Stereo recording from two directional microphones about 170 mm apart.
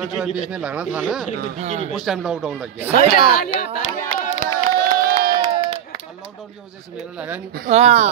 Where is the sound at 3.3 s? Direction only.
60° left (ahead or behind).